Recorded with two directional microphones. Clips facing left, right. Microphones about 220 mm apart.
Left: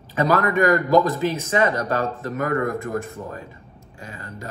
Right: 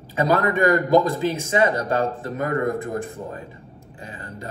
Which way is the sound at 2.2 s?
30° right (ahead or behind).